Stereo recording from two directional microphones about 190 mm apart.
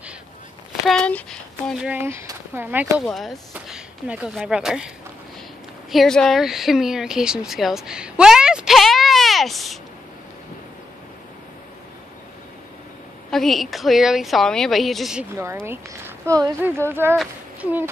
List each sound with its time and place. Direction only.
0.8 s speech: 5° left (ahead or behind)
3.1 s a woman's voice: centre (ahead or behind)
7.4 s a sound: centre (ahead or behind)
13.3 s a woman's voice: centre (ahead or behind)